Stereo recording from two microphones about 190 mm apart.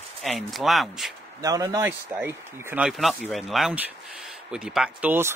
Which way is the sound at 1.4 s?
20° right (ahead or behind).